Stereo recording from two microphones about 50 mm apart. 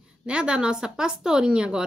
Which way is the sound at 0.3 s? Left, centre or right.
Centre.